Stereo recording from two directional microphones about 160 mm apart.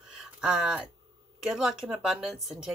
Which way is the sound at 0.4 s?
5° right (ahead or behind).